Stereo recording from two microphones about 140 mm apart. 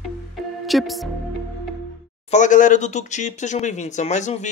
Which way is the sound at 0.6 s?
Centre (ahead or behind).